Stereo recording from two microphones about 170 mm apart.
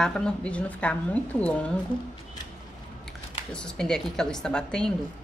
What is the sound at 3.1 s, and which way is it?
Speech, 5° left (ahead or behind).